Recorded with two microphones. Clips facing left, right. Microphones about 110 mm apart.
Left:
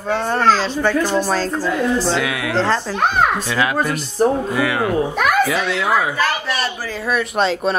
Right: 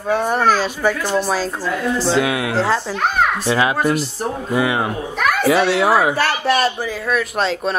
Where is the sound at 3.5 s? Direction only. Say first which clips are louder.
Right 2 dB; 25° right (ahead or behind).